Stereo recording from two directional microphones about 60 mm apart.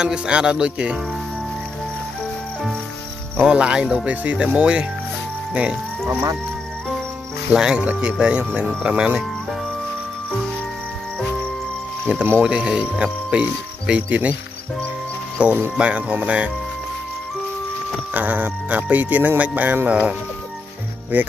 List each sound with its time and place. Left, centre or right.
0.0 s speech: centre
3.4 s speech: centre
7.5 s speech: centre
12.1 s speech: right
15.4 s speech: right
18.1 s speech: right